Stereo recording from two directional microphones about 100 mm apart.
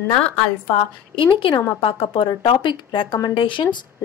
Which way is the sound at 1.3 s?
60° left (ahead or behind).